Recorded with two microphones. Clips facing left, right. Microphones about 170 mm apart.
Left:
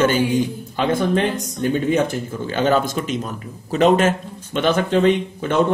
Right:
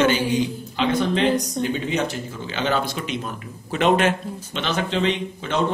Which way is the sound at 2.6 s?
45° left (ahead or behind).